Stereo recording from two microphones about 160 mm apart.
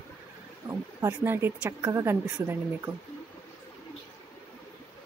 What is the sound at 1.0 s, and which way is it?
A woman's voice, 15° right (ahead or behind).